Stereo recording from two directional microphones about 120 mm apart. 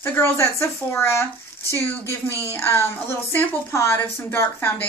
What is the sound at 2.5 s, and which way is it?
A woman's voice, 20° left (ahead or behind).